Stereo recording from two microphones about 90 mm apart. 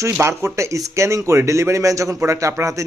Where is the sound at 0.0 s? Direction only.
30° right (ahead or behind).